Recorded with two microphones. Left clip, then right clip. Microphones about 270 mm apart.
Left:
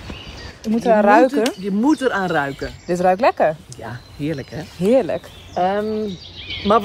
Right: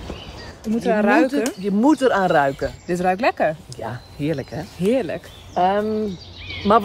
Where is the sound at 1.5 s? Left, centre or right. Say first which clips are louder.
Right 1 dB; right.